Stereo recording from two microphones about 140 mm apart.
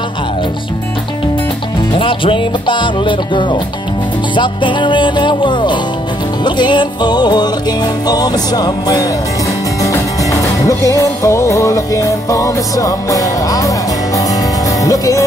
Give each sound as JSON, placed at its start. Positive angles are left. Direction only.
{"t": 2.0, "sound": "music", "side_deg": 40}